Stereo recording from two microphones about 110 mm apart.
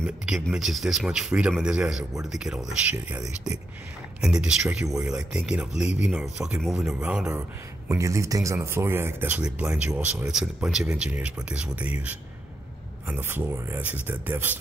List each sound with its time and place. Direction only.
0.0 s speech: 5° right (ahead or behind)
4.2 s speech: 5° right (ahead or behind)
7.9 s speech: 30° right (ahead or behind)
10.3 s speech: 5° right (ahead or behind)